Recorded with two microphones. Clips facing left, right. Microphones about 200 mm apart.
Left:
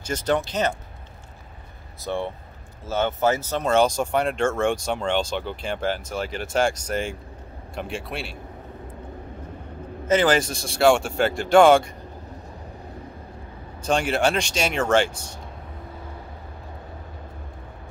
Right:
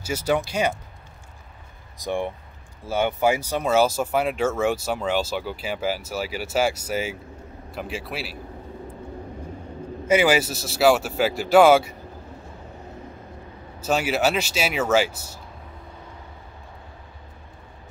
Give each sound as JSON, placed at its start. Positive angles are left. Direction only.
{"t": 0.0, "sound": "speech", "side_deg": -10}
{"t": 2.0, "sound": "speech", "side_deg": -15}
{"t": 10.0, "sound": "speech", "side_deg": -10}
{"t": 13.8, "sound": "speech", "side_deg": -5}